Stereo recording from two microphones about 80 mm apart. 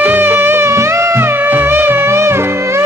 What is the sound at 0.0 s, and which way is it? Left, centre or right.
Music, right.